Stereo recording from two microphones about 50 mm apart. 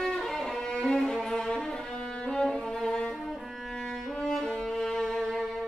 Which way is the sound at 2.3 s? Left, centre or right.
Centre.